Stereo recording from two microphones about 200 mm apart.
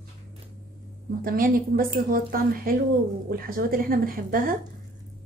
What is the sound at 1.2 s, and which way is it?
A woman's voice, 45° right (ahead or behind).